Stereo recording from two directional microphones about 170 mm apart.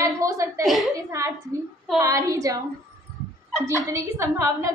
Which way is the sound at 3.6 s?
20° right (ahead or behind).